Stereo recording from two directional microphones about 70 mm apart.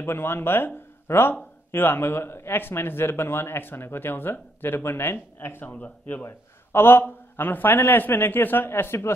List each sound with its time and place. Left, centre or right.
0.0 s speech: left